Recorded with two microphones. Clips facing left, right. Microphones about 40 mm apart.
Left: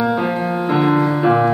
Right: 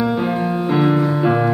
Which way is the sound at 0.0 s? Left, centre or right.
Centre.